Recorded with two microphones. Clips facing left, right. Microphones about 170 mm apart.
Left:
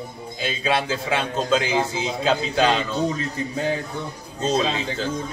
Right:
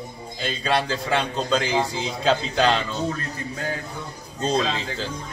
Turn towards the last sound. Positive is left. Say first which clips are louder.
# left 2 dB
turn(degrees=0)  # may be behind; listen again after turning